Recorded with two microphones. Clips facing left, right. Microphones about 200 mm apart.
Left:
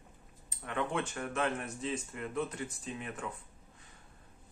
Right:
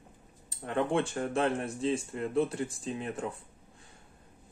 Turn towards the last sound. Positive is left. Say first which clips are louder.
# right 6 dB
turn(degrees=-35)  # may be behind; listen again after turning